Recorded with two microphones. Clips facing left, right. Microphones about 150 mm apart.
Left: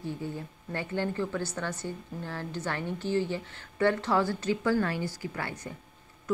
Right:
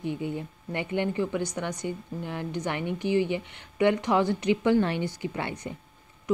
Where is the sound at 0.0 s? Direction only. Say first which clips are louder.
Right 4 dB; 20° right (ahead or behind).